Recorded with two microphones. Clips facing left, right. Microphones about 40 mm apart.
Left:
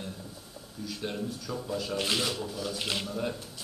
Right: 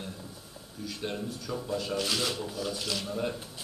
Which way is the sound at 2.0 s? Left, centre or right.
Left.